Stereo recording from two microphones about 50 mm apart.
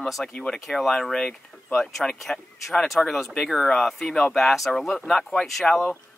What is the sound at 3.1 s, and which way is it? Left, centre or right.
Speech, centre.